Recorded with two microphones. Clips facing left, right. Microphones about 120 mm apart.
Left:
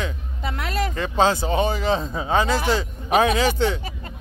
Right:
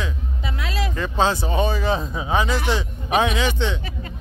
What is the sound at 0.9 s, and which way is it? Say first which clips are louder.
Speech: left 1 dB; 35° left (ahead or behind).